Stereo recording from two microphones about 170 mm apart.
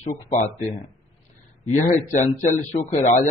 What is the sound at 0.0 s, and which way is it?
A man's voice, 45° left (ahead or behind).